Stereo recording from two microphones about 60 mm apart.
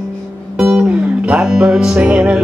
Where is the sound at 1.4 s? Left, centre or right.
Centre.